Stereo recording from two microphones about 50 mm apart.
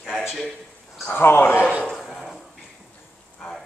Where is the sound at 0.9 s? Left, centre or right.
Centre.